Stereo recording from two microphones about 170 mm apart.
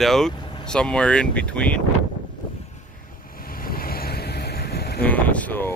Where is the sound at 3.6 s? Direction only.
60° left (ahead or behind).